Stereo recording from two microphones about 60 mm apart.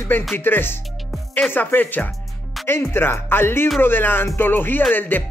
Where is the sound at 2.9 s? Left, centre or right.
Left.